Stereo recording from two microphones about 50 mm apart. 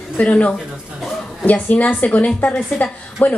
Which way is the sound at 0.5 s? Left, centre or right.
Centre.